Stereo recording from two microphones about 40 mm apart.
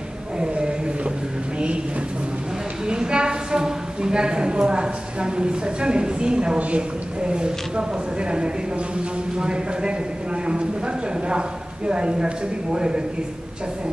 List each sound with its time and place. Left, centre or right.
0.4 s a sound: right
2.9 s a woman's voice: right
11.2 s speech: right